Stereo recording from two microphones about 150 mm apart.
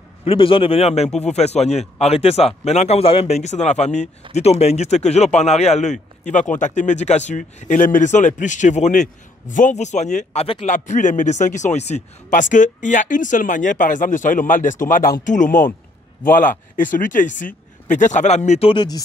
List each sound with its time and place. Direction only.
0.2 s speech: 35° left (ahead or behind)
10.7 s speech: 55° left (ahead or behind); by 18.9 s 35° left (ahead or behind)